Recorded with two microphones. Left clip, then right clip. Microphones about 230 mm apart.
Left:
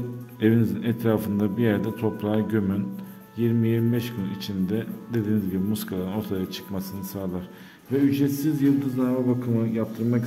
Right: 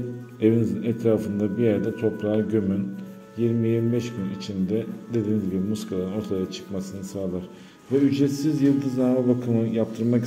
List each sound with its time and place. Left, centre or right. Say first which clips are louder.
0.4 s a man's voice: right 1 dB; left
8.1 s a man's voice: right 1 dB; centre